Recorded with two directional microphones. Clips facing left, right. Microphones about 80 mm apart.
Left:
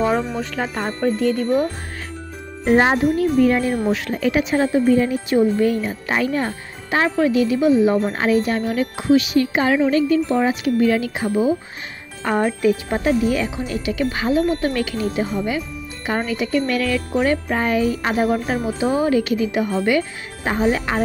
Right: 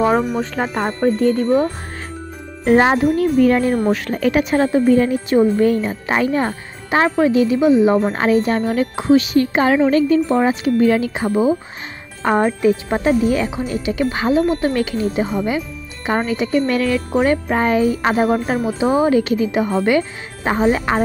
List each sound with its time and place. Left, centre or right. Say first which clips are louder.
0.0 s speech: right 4 dB; centre
1.0 s speech: right 3 dB; right
3.2 s jingle: right 2 dB; right
3.6 s speech: right 3 dB; right
7.9 s speech: right 3 dB; right
18.8 s speech: right 3 dB; right